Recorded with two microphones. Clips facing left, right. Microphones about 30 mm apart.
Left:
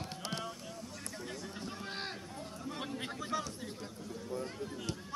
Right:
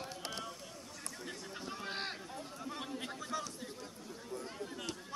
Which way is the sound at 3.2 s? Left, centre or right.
Centre.